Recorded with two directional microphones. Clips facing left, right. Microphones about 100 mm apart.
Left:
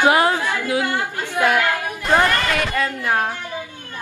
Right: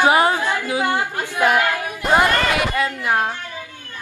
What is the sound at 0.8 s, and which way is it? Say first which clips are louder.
A woman's voice: right 2 dB; 15° right (ahead or behind).